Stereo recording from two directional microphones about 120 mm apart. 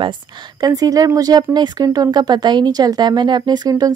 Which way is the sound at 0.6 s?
30° right (ahead or behind).